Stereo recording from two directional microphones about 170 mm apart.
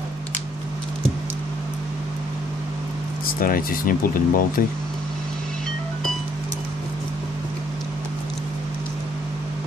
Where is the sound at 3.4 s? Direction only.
60° left (ahead or behind).